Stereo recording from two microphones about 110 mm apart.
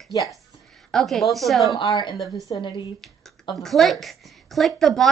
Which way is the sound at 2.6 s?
45° left (ahead or behind).